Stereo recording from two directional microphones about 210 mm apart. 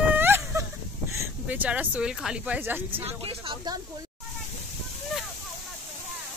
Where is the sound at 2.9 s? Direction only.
25° right (ahead or behind).